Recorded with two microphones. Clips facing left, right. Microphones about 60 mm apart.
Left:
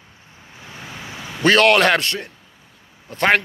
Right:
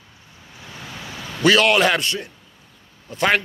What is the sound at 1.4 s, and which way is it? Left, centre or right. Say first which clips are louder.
Speech: left 2 dB; left.